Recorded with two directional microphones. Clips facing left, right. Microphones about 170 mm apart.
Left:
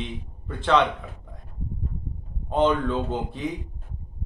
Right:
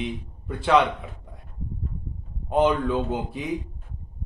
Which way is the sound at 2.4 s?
10° right (ahead or behind).